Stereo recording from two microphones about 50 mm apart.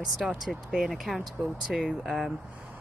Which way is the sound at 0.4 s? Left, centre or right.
Centre.